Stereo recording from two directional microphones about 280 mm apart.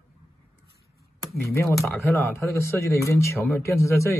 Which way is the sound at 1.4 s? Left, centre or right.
Centre.